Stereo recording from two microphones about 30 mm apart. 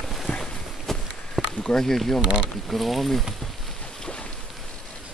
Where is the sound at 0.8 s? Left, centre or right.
Centre.